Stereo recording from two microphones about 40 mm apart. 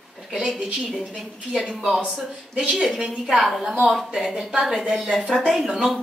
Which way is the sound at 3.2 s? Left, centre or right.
Centre.